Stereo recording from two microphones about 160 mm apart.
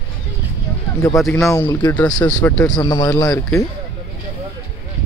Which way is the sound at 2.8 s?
25° left (ahead or behind).